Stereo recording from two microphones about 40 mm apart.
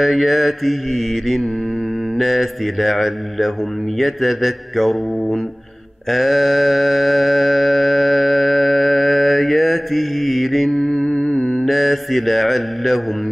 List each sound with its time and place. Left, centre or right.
0.0 s mantra: centre
6.0 s music: centre
11.1 s humming: left
11.6 s mantra: centre